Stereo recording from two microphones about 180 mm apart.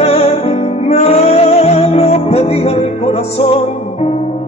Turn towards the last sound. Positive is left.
turn(degrees=35)  # may be behind; listen again after turning